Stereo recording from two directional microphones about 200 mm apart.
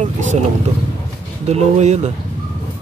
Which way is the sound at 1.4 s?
35° right (ahead or behind).